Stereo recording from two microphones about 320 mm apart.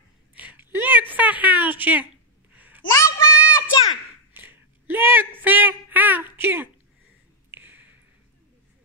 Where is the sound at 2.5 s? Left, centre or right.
Centre.